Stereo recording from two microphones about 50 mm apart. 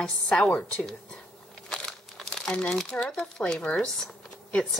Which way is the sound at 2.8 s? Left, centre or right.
Centre.